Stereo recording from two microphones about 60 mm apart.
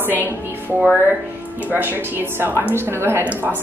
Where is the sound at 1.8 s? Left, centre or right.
Right.